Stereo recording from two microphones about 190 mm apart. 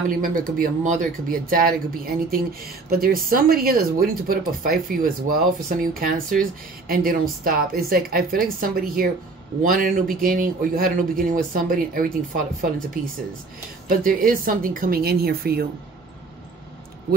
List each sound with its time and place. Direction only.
0.2 s speech: 45° right (ahead or behind)
13.8 s speech: 45° right (ahead or behind)